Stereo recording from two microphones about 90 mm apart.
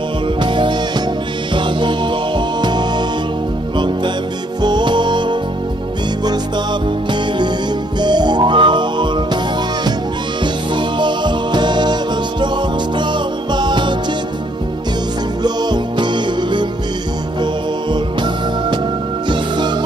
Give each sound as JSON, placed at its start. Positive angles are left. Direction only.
{"t": 0.4, "sound": "music", "side_deg": -65}
{"t": 8.0, "sound": "music", "side_deg": -55}
{"t": 10.4, "sound": "music", "side_deg": -60}
{"t": 13.5, "sound": "music", "side_deg": -55}
{"t": 15.4, "sound": "music", "side_deg": -55}
{"t": 17.9, "sound": "music", "side_deg": -60}